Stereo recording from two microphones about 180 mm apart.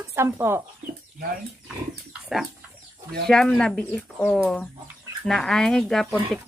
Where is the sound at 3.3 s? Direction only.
5° left (ahead or behind).